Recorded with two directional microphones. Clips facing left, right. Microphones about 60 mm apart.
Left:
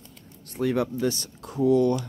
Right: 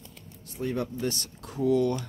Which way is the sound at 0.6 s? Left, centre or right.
Left.